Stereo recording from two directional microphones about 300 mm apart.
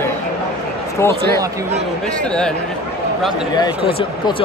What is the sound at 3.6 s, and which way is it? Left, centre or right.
Speech, centre.